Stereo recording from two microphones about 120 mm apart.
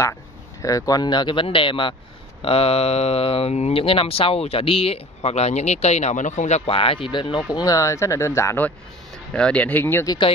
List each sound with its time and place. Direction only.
0.6 s speech: 30° left (ahead or behind); by 2.0 s 45° left (ahead or behind)
2.4 s speech: 55° left (ahead or behind); by 6.6 s 80° left
6.6 s speech: 50° left (ahead or behind); by 8.6 s 20° left (ahead or behind)
9.3 s speech: 10° left (ahead or behind)